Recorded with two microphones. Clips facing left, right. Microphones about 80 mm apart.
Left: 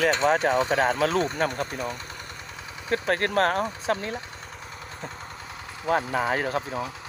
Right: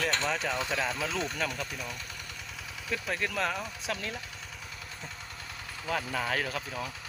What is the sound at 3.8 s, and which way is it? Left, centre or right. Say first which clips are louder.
Speech: left 8 dB; left.